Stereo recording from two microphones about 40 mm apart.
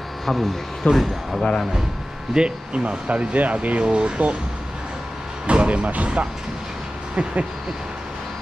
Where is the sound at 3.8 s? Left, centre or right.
Right.